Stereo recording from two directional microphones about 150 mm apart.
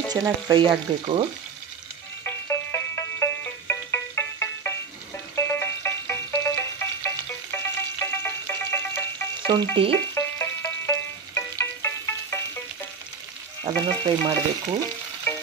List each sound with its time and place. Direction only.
0.1 s frying: 30° right (ahead or behind)
2.2 s music: 15° left (ahead or behind)
9.5 s frying: 35° right (ahead or behind)
10.1 s music: 15° left (ahead or behind)
13.7 s frying: 30° right (ahead or behind)